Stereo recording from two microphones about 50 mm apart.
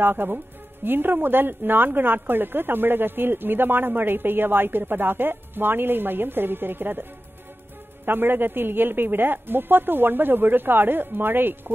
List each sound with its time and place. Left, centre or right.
0.0 s a woman's voice: right